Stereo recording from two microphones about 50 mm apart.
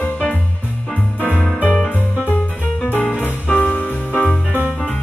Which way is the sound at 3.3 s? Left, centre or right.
Left.